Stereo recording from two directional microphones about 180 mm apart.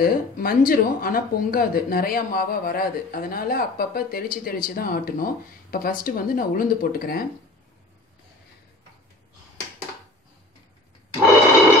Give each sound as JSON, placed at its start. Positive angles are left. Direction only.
{"t": 0.0, "sound": "speech", "side_deg": 55}